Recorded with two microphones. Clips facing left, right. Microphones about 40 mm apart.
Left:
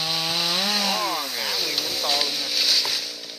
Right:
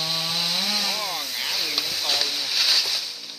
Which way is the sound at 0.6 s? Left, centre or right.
Left.